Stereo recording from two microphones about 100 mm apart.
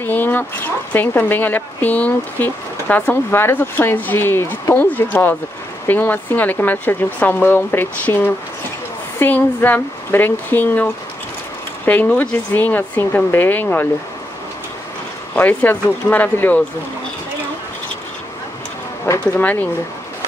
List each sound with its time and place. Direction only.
0.0 s speech: 20° left (ahead or behind)
15.3 s speech: 20° left (ahead or behind)
19.1 s speech: 25° left (ahead or behind)